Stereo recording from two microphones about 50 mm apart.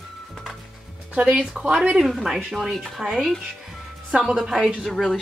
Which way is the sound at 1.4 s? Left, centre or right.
Centre.